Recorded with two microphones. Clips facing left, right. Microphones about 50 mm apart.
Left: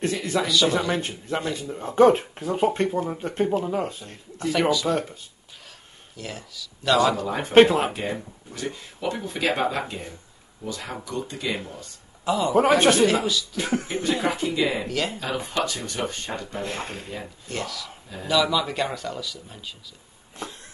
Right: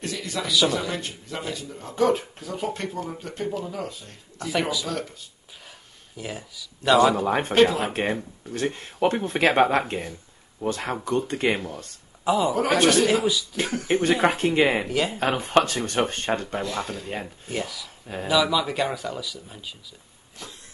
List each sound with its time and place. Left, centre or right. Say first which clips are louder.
0.0 s speech: left 5 dB; left
4.5 s speech: left 4 dB; centre
4.8 s speech: left 6 dB; left
6.1 s speech: right 1 dB; centre
7.2 s speech: left 3 dB; right
12.3 s speech: right 2 dB; centre
12.5 s speech: left 6 dB; left
13.0 s speech: left 1 dB; centre
13.8 s speech: right 4 dB; right
14.9 s speech: right 2 dB; centre
15.1 s speech: right 6 dB; right
16.6 s speech: right 2 dB; left
17.5 s speech: left 1 dB; centre
20.4 s speech: left 6 dB; left